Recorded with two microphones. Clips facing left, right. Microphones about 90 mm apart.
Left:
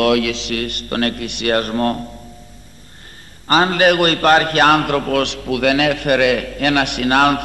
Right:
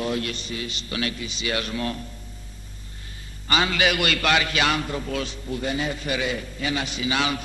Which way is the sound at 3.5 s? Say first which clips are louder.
Left 9 dB; 45° left (ahead or behind).